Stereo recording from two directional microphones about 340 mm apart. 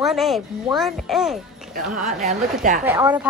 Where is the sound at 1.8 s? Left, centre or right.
Right.